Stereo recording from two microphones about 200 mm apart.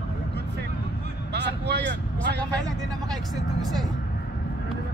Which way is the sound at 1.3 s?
55° right (ahead or behind).